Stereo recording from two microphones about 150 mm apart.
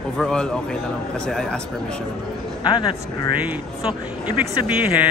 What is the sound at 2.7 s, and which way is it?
Speech, 35° left (ahead or behind).